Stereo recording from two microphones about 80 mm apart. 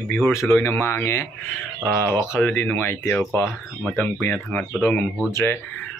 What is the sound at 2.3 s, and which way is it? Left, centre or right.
Speech, centre.